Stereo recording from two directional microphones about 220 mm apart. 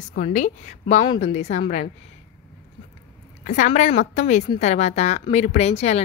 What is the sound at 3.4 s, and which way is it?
A woman's voice, 35° left (ahead or behind).